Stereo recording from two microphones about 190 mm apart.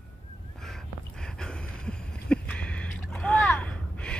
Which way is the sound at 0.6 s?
Centre (ahead or behind).